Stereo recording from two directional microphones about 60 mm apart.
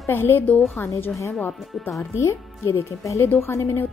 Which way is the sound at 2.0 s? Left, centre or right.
Left.